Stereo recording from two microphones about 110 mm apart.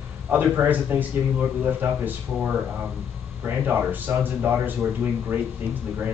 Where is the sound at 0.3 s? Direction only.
15° right (ahead or behind).